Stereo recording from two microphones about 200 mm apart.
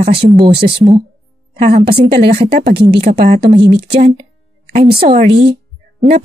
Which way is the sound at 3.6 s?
25° right (ahead or behind).